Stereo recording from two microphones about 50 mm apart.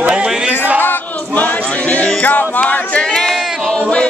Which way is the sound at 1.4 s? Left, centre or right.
Left.